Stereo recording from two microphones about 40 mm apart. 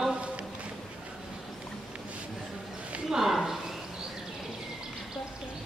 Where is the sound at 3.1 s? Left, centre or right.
Centre.